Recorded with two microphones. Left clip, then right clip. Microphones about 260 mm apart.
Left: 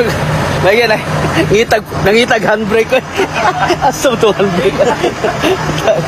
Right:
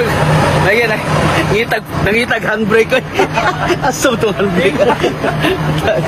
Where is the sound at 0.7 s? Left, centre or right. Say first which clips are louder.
Left 2 dB; centre.